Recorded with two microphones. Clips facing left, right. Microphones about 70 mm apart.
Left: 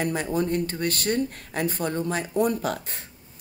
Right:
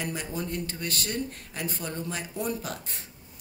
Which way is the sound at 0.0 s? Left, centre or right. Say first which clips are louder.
Left 8 dB; left.